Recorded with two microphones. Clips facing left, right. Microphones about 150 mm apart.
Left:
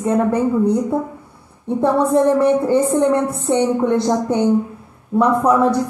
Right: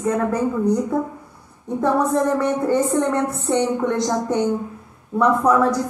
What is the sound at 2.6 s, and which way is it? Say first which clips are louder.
A woman's voice: left 4 dB; 25° left (ahead or behind).